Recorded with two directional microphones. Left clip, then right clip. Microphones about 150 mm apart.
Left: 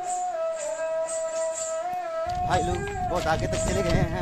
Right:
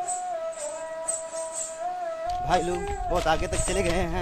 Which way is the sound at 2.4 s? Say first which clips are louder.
Right 2 dB; 10° right (ahead or behind).